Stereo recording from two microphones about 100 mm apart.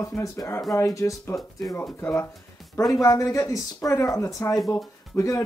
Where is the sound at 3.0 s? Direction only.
35° left (ahead or behind).